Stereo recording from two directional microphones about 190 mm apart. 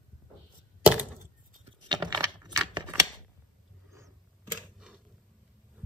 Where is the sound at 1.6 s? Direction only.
25° right (ahead or behind).